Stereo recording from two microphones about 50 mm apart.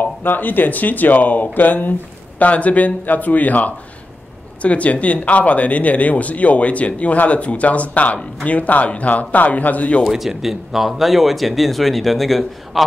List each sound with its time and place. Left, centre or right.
0.0 s speech: left
10.0 s speech: centre